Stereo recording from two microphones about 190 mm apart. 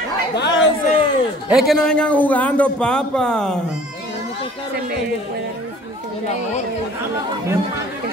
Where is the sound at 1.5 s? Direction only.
Centre (ahead or behind).